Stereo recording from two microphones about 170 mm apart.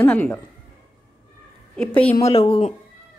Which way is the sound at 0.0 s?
10° left (ahead or behind).